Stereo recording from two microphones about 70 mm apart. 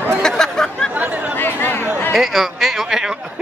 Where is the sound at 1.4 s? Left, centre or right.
Left.